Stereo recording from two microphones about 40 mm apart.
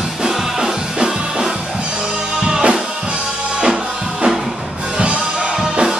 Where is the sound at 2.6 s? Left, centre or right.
Right.